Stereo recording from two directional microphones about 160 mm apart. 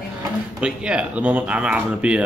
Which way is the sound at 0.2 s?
5° right (ahead or behind).